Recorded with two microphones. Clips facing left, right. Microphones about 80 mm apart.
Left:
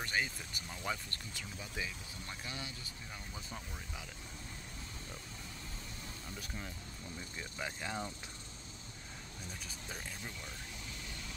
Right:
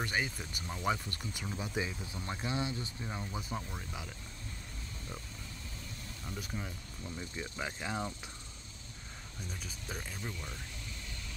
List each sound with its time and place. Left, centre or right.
0.0 s speech: centre
3.3 s speech: centre
6.4 s speech: centre
9.5 s speech: centre